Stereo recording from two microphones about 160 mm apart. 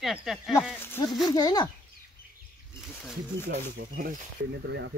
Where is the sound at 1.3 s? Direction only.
25° left (ahead or behind).